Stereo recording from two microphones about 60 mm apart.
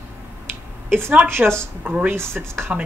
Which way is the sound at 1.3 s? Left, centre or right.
Right.